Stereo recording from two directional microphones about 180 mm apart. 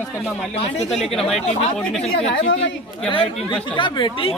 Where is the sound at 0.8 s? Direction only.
Centre (ahead or behind).